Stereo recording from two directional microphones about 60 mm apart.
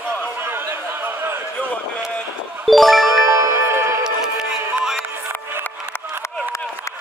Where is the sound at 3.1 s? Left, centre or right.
Right.